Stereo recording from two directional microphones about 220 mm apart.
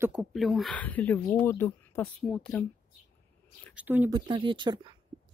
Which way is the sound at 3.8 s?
10° right (ahead or behind).